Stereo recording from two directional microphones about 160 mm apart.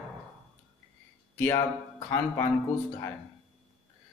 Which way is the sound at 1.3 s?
15° left (ahead or behind).